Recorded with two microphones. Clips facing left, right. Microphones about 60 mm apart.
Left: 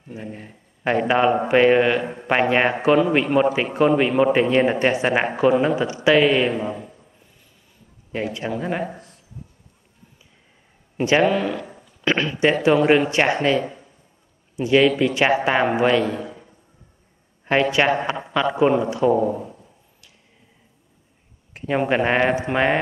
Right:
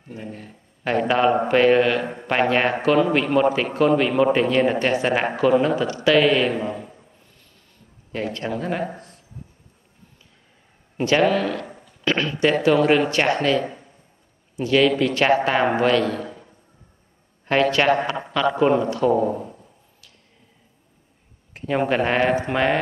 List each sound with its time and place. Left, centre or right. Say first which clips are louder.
0.1 s a man's voice: left 1 dB; left
8.1 s a man's voice: left 1 dB; centre
8.8 s a man's voice: right 1 dB; right
11.0 s a man's voice: left 1 dB; centre
17.5 s a man's voice: even; centre
19.2 s speech: even; centre
21.5 s a man's voice: left 1 dB; centre